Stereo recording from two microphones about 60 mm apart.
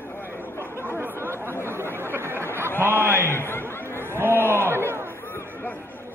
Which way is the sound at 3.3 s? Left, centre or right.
Left.